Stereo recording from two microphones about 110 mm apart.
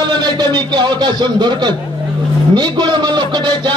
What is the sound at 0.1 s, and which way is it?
A man's voice, 40° right (ahead or behind).